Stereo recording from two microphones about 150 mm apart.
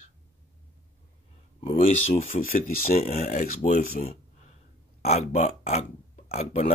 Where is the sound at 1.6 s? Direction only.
40° left (ahead or behind).